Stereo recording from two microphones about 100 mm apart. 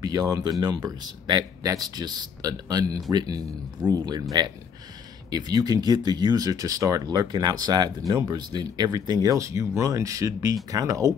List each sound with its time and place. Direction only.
0.0 s speech: 40° right (ahead or behind)